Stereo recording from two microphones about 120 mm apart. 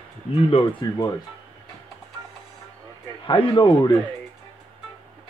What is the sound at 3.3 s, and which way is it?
Speech, 45° left (ahead or behind).